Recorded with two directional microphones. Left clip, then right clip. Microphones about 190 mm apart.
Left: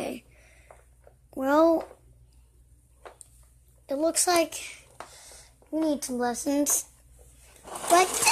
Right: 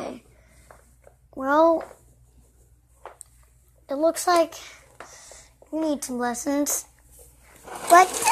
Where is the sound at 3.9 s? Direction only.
5° left (ahead or behind).